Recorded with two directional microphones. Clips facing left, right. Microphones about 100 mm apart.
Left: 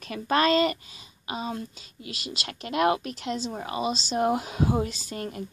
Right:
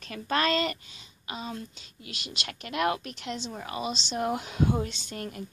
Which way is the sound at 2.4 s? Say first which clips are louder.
Left 4 dB; 35° left (ahead or behind).